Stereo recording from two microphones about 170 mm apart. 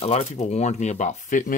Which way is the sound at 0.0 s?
40° left (ahead or behind).